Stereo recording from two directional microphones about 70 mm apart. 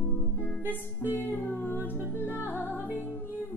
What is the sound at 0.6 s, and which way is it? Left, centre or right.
Music, left.